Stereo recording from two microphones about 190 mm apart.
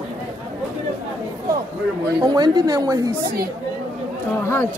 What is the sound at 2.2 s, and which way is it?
Speech, 20° right (ahead or behind).